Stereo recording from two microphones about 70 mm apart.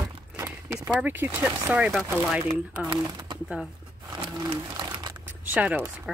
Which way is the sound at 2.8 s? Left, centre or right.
Right.